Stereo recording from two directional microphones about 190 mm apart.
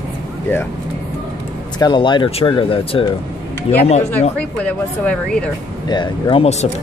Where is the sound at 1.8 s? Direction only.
25° left (ahead or behind).